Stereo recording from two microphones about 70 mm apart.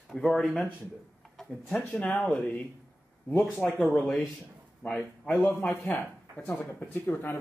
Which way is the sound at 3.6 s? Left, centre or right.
Centre.